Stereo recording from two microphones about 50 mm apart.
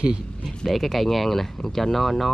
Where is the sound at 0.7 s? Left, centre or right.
Centre.